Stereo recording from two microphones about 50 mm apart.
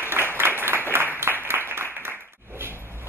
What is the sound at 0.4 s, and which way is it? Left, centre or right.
Applause, right.